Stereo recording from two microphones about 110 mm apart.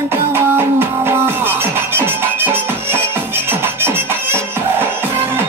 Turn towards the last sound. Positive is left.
turn(degrees=-20)  # may be behind; listen again after turning